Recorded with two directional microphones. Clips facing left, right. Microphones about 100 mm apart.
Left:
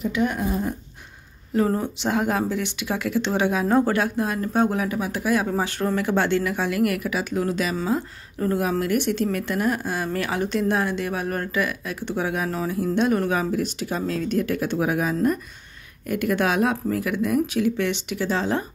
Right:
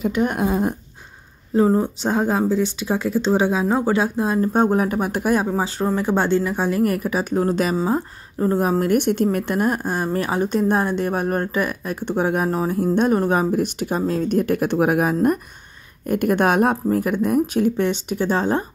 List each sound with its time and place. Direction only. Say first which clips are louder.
0.1 s speech: right 2 dB; 50° right (ahead or behind)
0.4 s dog: right 5 dB; 90° right
1.5 s speech: right 5 dB; 25° right (ahead or behind)
3.6 s speech: even; 10° right (ahead or behind)
3.9 s speech: right 4 dB; 25° right (ahead or behind)
4.6 s speech: right 2 dB; 40° right (ahead or behind)
5.9 s speech: right 3 dB; 30° right (ahead or behind)
7.7 s speech: right 4 dB; 30° right (ahead or behind)
8.5 s speech: right 4 dB; 40° right (ahead or behind)